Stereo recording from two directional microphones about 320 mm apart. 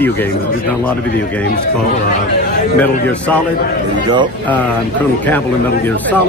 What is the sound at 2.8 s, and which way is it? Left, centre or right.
Speech, centre.